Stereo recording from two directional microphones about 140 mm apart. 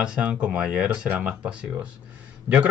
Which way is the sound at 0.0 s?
10° right (ahead or behind).